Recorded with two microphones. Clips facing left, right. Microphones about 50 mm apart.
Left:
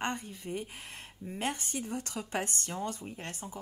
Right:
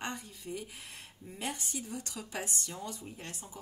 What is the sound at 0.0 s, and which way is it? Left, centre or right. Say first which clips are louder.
Speech: left 5 dB; left.